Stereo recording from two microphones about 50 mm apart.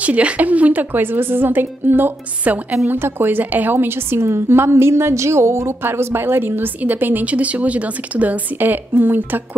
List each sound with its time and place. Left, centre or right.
0.0 s a woman's voice: right
0.9 s a woman's voice: right
2.4 s a woman's voice: right
2.9 s a woman's voice: right
7.2 s speech: right
8.5 s a woman's voice: right